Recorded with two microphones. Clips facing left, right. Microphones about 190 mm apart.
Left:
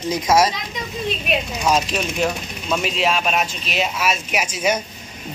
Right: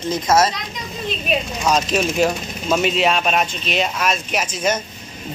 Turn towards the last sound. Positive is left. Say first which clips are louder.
# even
turn(degrees=10)  # may be behind; listen again after turning